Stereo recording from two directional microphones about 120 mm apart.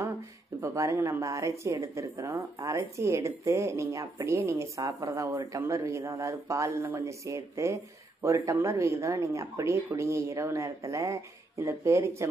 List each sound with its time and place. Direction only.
0.6 s speech: 25° right (ahead or behind)